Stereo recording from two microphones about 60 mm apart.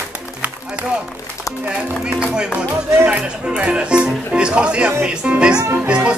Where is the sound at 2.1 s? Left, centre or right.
Right.